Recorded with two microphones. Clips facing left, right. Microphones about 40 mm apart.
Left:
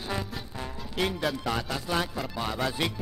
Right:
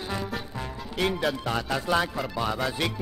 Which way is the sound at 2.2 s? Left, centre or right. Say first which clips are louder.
Right 3 dB; centre.